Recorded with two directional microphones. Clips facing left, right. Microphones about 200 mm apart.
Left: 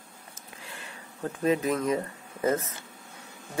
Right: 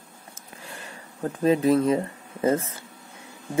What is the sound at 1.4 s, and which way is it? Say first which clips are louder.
Speech: right 6 dB; 30° right (ahead or behind).